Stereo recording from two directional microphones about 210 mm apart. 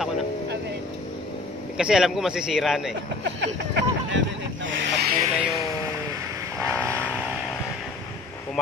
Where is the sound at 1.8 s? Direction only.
5° right (ahead or behind).